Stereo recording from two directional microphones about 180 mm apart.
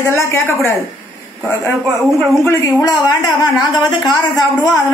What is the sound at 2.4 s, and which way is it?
Speech, 15° left (ahead or behind).